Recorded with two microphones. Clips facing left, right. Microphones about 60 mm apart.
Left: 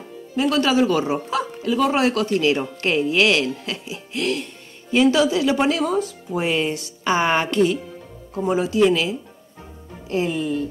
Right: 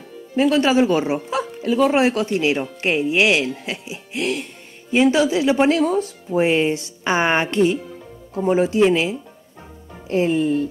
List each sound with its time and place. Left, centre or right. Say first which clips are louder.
0.4 s speech: right 2 dB; right